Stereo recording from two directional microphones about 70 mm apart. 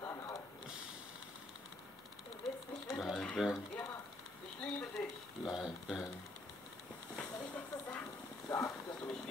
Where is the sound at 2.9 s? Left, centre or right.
Centre.